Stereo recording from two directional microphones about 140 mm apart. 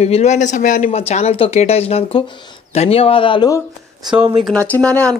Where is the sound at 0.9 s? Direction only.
50° left (ahead or behind).